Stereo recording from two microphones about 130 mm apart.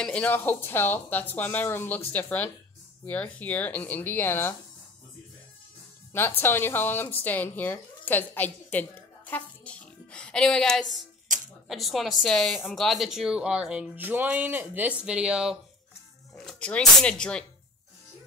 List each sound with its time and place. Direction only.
0.0 s speech: 10° left (ahead or behind)
6.4 s a woman's voice: 15° left (ahead or behind)
11.3 s a sound: 85° right
11.6 s speech: centre (ahead or behind)
16.3 s speech: 5° left (ahead or behind)